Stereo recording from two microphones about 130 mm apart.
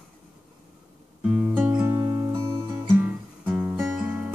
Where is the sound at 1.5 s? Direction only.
10° right (ahead or behind).